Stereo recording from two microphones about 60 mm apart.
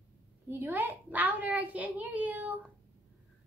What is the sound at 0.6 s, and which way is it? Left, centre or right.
A child's voice, right.